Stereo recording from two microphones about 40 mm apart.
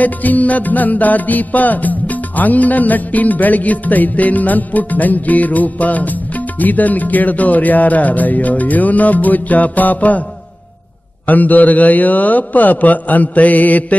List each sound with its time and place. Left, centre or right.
0.0 s music: left
11.2 s music: left